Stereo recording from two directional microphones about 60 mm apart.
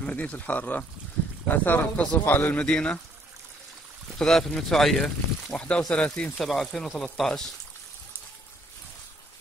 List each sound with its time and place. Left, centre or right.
0.0 s speech: left
4.2 s speech: centre
6.4 s speech: centre